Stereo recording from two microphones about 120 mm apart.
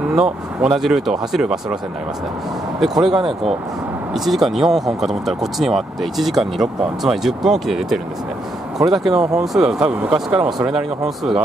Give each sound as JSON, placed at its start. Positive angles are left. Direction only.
{"t": 0.1, "sound": "speech", "side_deg": -5}
{"t": 2.8, "sound": "speech", "side_deg": 0}
{"t": 3.1, "sound": "speech", "side_deg": -45}
{"t": 4.1, "sound": "speech", "side_deg": 0}